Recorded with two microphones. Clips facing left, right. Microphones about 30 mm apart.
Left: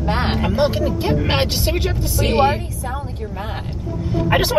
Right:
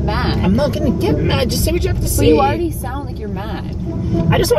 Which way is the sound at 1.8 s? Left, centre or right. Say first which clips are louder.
Right 7 dB; centre.